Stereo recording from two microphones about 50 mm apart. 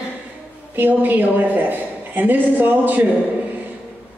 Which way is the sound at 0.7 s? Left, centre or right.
Right.